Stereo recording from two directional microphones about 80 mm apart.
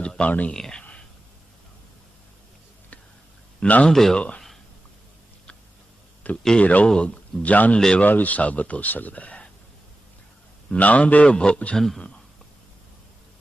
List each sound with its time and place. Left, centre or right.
0.0 s speech: centre
0.6 s a sound: centre
3.5 s speech: centre
3.9 s speech: centre
6.4 s a man's voice: centre
10.7 s a man's voice: centre